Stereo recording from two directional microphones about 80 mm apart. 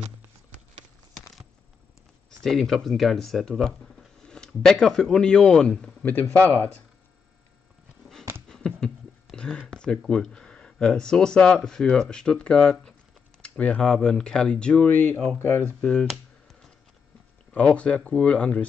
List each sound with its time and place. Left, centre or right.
2.4 s speech: centre
6.3 s speech: left
8.5 s a sound: centre
9.6 s speech: centre
15.2 s speech: left
15.8 s speech: centre
17.5 s speech: centre